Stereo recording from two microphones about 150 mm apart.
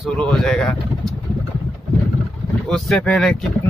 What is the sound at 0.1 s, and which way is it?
Speech, 5° left (ahead or behind).